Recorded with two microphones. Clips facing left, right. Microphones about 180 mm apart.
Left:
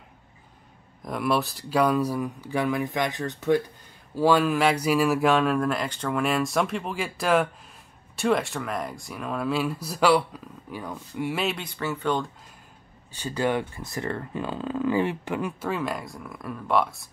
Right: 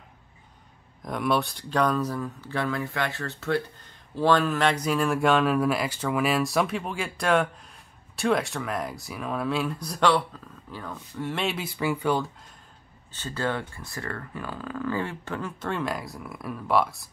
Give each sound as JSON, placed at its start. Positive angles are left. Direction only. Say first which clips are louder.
{"t": 1.0, "sound": "speech", "louder": "even", "side_deg": 0}
{"t": 13.1, "sound": "speech", "louder": "left 4 dB", "side_deg": 15}
{"t": 15.7, "sound": "speech", "louder": "left 1 dB", "side_deg": 0}